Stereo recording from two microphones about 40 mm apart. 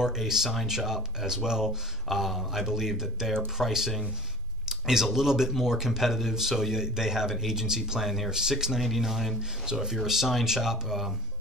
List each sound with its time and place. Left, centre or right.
0.0 s speech: centre
2.1 s speech: centre